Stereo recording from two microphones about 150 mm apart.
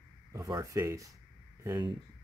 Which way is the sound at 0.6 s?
20° right (ahead or behind).